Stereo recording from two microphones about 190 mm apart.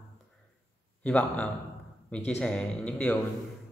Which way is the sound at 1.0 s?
5° left (ahead or behind).